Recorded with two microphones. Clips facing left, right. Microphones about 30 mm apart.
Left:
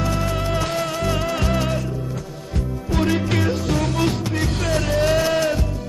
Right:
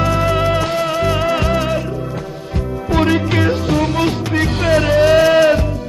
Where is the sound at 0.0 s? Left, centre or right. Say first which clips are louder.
Right 8 dB; right.